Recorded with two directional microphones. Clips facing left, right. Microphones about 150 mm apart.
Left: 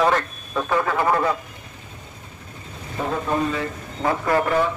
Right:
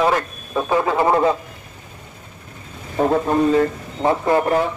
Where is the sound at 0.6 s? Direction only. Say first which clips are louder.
Right 3 dB; 20° right (ahead or behind).